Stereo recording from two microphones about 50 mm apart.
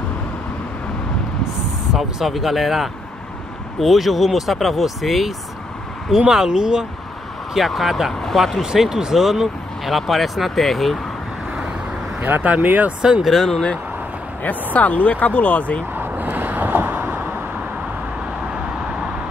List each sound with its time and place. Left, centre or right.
2.0 s speech: centre
7.5 s speech: centre
8.1 s speech: centre
8.7 s speech: centre
12.2 s speech: right
13.2 s speech: centre
13.5 s speech: centre
14.4 s speech: left
15.9 s vehicle: right